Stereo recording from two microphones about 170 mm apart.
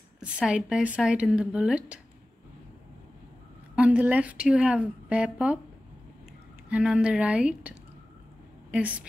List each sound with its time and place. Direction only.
0.2 s a woman's voice: 5° right (ahead or behind)
3.7 s a woman's voice: 10° right (ahead or behind)
6.7 s a woman's voice: 5° right (ahead or behind)
8.7 s a woman's voice: 10° right (ahead or behind)